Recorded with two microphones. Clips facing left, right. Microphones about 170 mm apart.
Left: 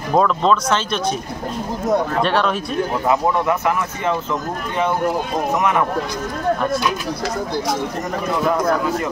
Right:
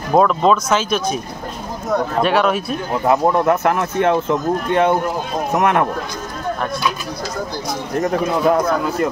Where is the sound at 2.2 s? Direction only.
5° right (ahead or behind).